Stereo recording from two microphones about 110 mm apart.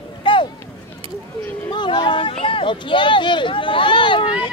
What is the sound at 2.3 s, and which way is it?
Speech, 55° left (ahead or behind).